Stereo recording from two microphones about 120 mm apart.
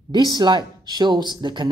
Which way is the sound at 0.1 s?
35° right (ahead or behind).